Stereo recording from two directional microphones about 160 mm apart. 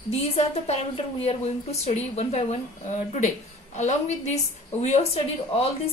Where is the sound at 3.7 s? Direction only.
45° left (ahead or behind).